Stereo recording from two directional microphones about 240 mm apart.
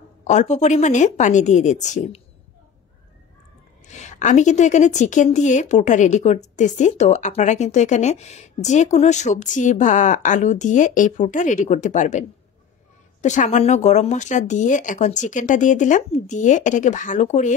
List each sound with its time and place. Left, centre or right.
0.3 s a woman's voice: left
3.8 s a woman's voice: left